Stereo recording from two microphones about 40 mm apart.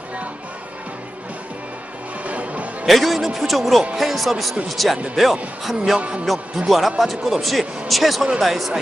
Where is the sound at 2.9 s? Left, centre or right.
Centre.